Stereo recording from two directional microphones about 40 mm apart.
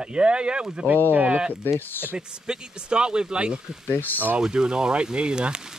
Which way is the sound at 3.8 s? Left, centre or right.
Left.